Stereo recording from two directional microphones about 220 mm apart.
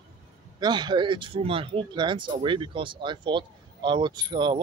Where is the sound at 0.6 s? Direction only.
20° right (ahead or behind).